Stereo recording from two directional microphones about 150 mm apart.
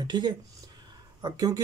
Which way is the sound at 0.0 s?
30° right (ahead or behind).